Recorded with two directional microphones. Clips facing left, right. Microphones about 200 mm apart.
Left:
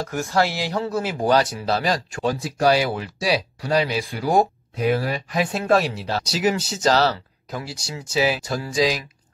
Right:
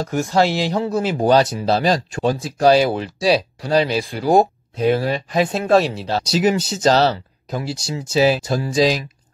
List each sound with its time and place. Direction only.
0.0 s speech: 20° right (ahead or behind)